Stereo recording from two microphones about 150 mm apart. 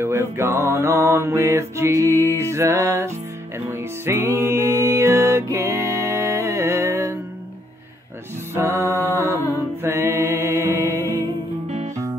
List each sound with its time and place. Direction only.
0.0 s music: 15° right (ahead or behind)
8.5 s mantra: 15° right (ahead or behind)
9.8 s music: 15° right (ahead or behind)